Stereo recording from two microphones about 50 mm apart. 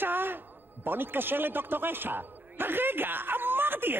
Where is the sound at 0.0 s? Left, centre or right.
Right.